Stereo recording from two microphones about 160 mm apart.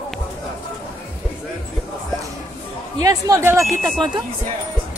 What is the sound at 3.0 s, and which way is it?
Speech, 20° right (ahead or behind).